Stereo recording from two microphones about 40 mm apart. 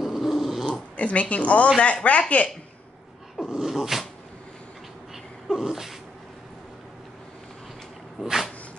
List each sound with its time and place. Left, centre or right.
0.0 s dog: centre
0.7 s dog: left
1.3 s speech: left
3.3 s a sound: centre
5.1 s sneeze: centre
8.2 s a sound: centre